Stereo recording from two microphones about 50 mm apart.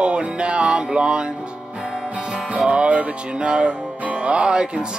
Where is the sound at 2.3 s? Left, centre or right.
Right.